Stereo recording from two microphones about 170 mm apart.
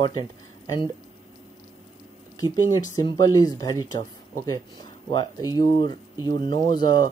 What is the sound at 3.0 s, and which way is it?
Speech, 20° left (ahead or behind).